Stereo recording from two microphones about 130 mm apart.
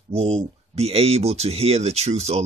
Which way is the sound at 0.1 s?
50° right (ahead or behind).